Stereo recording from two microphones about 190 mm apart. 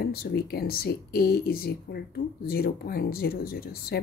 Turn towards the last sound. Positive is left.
turn(degrees=55)  # may be behind; listen again after turning